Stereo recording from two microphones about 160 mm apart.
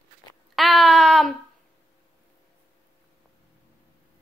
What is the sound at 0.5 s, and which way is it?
Speech, 5° left (ahead or behind).